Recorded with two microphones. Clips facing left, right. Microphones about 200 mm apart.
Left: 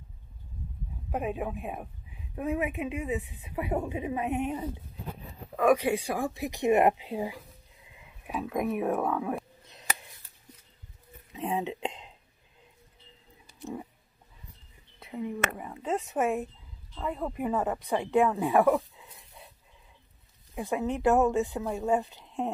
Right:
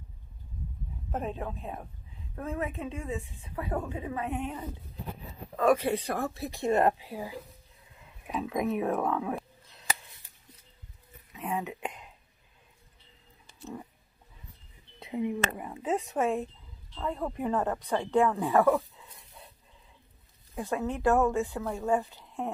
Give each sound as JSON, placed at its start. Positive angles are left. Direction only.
{"t": 1.1, "sound": "speech", "side_deg": 10}
{"t": 8.3, "sound": "speech", "side_deg": 5}
{"t": 11.3, "sound": "speech", "side_deg": 25}
{"t": 13.6, "sound": "a sound", "side_deg": 15}
{"t": 15.0, "sound": "a sound", "side_deg": -15}
{"t": 15.3, "sound": "speech", "side_deg": 0}
{"t": 20.5, "sound": "a woman's voice", "side_deg": 15}